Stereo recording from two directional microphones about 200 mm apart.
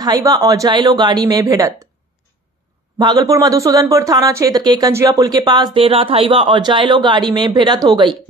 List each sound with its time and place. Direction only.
0.0 s speech: 20° right (ahead or behind)
3.0 s speech: 20° right (ahead or behind)